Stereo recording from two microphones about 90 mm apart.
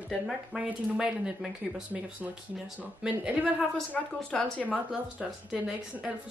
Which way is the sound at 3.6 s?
15° left (ahead or behind).